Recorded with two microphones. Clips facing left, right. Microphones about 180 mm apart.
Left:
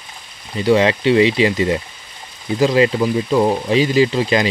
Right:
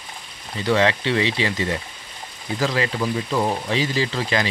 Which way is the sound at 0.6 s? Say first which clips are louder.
Left 6 dB; 15° left (ahead or behind).